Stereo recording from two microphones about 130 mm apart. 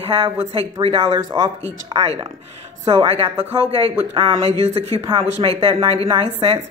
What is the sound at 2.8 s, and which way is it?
A woman's voice, 45° right (ahead or behind).